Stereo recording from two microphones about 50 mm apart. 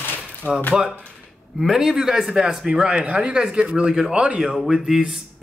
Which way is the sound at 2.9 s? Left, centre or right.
Right.